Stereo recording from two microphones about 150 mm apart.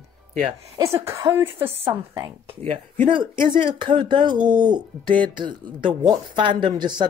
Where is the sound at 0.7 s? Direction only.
20° right (ahead or behind).